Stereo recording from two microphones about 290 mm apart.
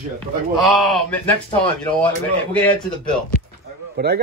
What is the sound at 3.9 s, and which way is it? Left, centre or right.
Speech, right.